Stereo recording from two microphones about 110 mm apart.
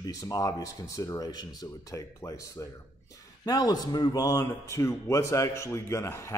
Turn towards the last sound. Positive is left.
turn(degrees=25)  # may be behind; listen again after turning